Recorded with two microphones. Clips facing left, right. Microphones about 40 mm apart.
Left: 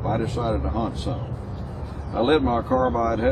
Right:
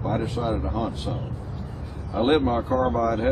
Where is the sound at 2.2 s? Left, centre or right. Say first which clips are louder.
Left 1 dB; centre.